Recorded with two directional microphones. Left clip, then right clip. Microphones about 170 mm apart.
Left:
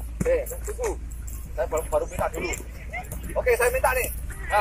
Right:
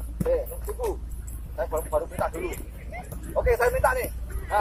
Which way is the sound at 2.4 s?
40° left (ahead or behind).